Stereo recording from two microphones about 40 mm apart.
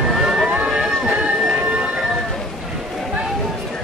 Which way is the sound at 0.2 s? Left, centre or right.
Centre.